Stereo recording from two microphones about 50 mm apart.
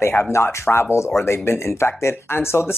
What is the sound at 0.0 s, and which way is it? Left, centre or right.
Speech, left.